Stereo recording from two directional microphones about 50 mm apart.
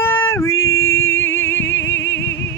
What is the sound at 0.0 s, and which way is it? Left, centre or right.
Music, left.